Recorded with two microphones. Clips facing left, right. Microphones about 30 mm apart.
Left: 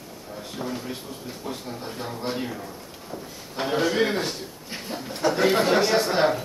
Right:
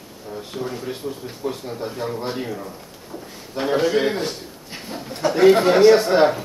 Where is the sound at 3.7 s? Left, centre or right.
Centre.